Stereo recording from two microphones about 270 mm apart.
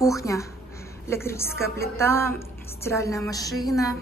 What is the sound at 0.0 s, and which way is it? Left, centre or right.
A woman's voice, centre.